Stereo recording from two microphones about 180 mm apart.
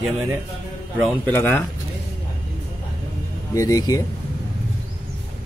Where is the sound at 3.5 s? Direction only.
20° left (ahead or behind).